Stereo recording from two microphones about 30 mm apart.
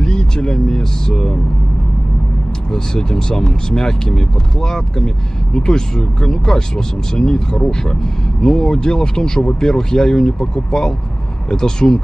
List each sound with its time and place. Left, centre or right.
0.0 s speech: left
2.7 s speech: left